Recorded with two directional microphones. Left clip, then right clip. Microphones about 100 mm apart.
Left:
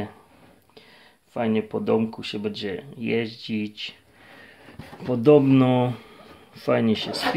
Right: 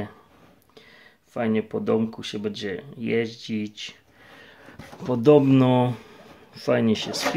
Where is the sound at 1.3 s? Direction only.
15° right (ahead or behind).